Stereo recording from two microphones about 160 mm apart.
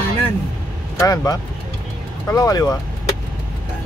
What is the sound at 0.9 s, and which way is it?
Speech, 20° left (ahead or behind).